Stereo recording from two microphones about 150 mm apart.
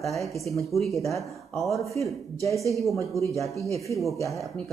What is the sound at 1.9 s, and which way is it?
Speech, 20° left (ahead or behind).